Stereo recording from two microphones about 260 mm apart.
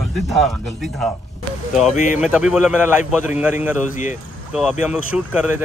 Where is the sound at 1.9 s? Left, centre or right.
Left.